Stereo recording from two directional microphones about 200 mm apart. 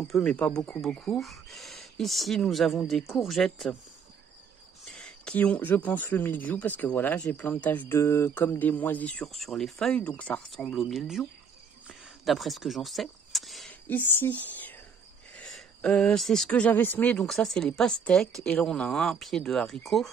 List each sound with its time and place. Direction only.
0.1 s speech: 5° left (ahead or behind)
4.8 s speech: centre (ahead or behind)
11.9 s a sound: centre (ahead or behind)
15.3 s speech: 5° left (ahead or behind)